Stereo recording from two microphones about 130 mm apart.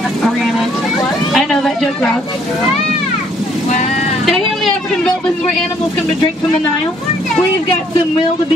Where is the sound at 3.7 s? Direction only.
60° left (ahead or behind).